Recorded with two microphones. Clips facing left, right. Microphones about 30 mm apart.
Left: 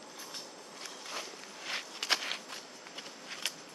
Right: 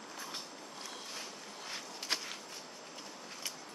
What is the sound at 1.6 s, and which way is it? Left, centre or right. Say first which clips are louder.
Walk: left 6 dB; left.